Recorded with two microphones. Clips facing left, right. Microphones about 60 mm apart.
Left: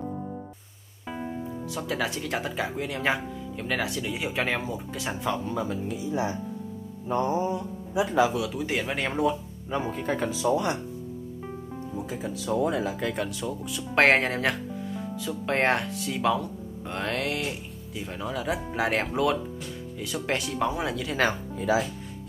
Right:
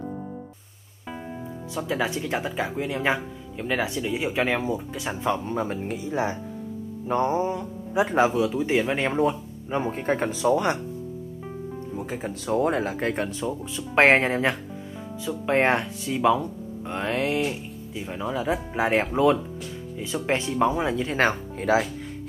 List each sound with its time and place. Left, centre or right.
1.8 s speech: centre
5.5 s speech: right
5.8 s speech: right
7.9 s speech: right
8.5 s speech: centre
9.1 s speech: right
10.3 s speech: right
12.1 s speech: right
13.1 s speech: right
13.5 s speech: centre
17.4 s speech: centre; by 21.4 s right
21.5 s speech: right